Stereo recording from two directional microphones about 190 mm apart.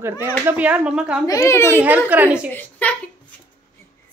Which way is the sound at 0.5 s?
10° right (ahead or behind).